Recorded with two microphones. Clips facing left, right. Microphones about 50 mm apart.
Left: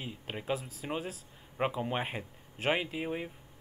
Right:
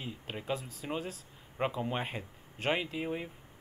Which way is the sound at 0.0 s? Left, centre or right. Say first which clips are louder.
Left 1 dB; centre.